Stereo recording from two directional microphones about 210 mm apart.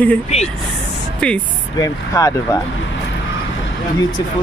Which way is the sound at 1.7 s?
15° left (ahead or behind).